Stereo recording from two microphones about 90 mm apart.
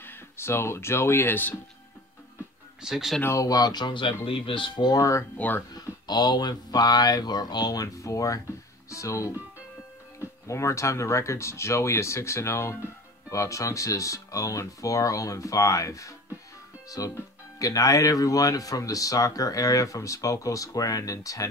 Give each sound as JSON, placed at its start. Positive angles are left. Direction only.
{"t": 0.0, "sound": "speech", "side_deg": 25}
{"t": 2.8, "sound": "speech", "side_deg": -5}
{"t": 3.3, "sound": "speech", "side_deg": 40}
{"t": 5.4, "sound": "speech", "side_deg": 15}
{"t": 5.8, "sound": "speech", "side_deg": 50}
{"t": 10.4, "sound": "speech", "side_deg": 35}